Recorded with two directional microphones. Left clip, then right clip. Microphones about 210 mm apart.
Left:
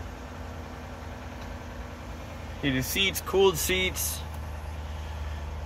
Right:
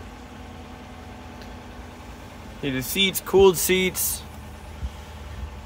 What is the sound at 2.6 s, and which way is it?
Speech, 40° right (ahead or behind).